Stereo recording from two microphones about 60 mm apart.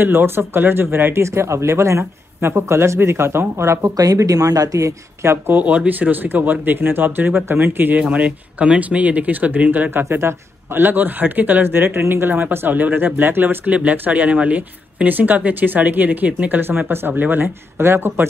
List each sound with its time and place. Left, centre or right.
0.0 s speech: right
1.2 s speech: right
3.9 s speech: right
5.5 s speech: right
8.0 s speech: right
9.8 s speech: right
11.6 s speech: right
13.7 s speech: right